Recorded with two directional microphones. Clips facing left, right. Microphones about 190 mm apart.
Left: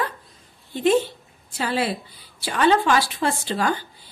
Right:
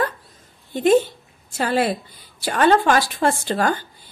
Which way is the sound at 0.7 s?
45° right (ahead or behind).